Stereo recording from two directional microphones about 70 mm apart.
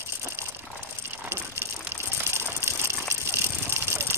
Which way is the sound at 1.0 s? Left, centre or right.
Right.